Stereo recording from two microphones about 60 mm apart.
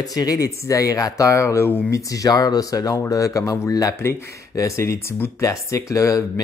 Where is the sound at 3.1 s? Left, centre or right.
Left.